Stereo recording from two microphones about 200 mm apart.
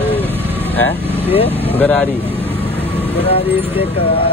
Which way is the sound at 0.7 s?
10° left (ahead or behind).